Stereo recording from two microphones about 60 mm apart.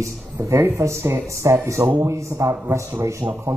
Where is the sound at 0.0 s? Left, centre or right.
Right.